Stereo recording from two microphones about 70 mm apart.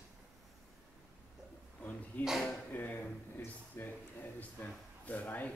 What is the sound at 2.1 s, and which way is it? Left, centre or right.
Speech, left.